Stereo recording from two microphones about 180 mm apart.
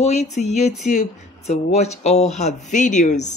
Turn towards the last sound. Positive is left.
turn(degrees=40)  # may be behind; listen again after turning